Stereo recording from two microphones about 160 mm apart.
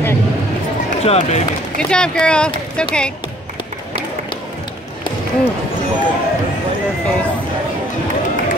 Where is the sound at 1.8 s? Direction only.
5° left (ahead or behind).